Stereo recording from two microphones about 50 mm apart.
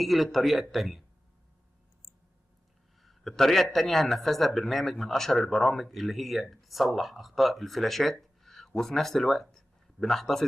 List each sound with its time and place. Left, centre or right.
0.0 s speech: centre
3.0 s a sound: centre
3.7 s speech: centre